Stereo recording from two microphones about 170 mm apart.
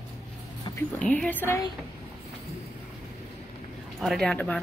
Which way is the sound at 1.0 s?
10° left (ahead or behind).